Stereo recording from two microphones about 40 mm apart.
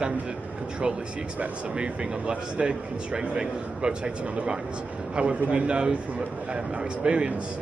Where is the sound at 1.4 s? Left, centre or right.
Right.